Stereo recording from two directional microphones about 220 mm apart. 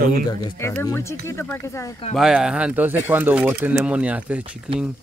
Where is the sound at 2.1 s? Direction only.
5° right (ahead or behind).